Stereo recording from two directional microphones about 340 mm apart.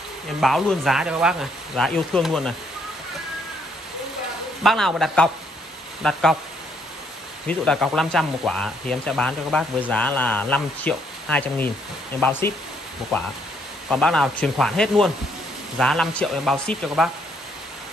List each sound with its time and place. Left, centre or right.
0.4 s speech: centre
4.6 s speech: centre
7.4 s speech: centre
13.8 s speech: centre